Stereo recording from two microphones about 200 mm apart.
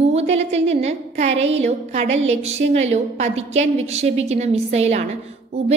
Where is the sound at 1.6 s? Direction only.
35° right (ahead or behind).